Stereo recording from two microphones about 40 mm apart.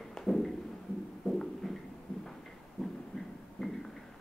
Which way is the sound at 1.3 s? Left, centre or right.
Centre.